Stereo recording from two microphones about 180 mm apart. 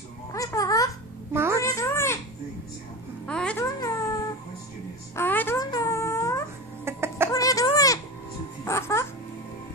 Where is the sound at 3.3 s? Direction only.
5° left (ahead or behind).